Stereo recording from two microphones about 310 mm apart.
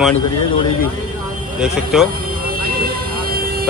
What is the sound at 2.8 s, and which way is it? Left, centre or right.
Vehicle, right.